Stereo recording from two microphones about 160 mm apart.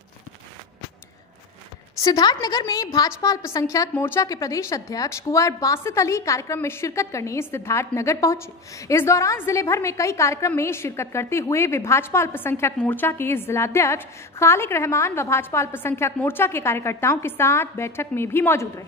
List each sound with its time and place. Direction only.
2.0 s a woman's voice: 25° left (ahead or behind)